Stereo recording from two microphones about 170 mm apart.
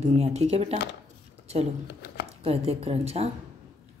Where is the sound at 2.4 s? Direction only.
35° right (ahead or behind).